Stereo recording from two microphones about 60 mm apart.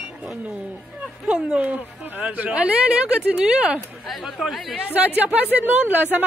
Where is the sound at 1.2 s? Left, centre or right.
Right.